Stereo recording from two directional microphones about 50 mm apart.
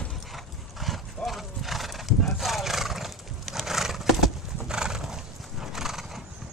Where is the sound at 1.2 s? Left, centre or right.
Centre.